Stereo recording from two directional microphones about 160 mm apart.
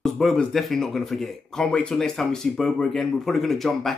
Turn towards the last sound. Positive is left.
turn(degrees=0)  # may be behind; listen again after turning